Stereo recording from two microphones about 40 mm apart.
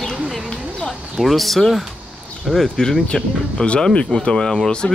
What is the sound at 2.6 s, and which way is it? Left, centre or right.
Speech, centre.